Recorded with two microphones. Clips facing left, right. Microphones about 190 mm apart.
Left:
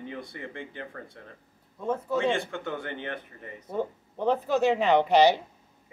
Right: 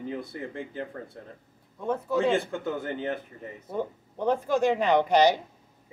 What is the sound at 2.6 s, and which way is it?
Speech, 5° right (ahead or behind).